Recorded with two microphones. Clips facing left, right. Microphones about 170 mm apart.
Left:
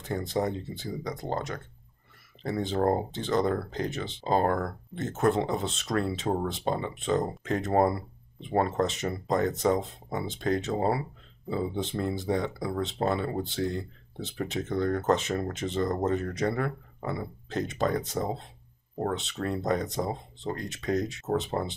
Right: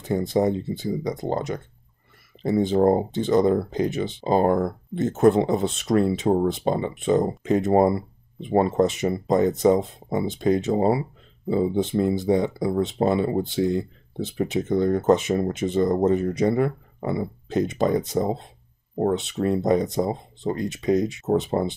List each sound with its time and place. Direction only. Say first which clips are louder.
0.1 s speech: right 8 dB; 15° right (ahead or behind)